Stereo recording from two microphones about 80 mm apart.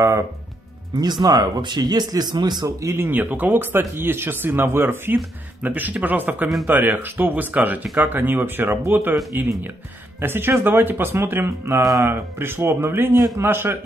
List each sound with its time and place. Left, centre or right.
0.9 s speech: right
3.0 s speech: right